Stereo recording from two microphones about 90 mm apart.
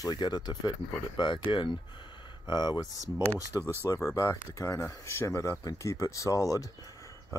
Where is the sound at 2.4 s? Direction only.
50° left (ahead or behind).